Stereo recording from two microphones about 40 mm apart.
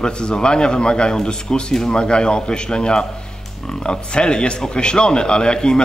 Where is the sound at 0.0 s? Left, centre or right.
Left.